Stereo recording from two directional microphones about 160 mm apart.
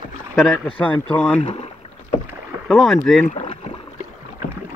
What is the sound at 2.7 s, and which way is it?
Speech, centre (ahead or behind).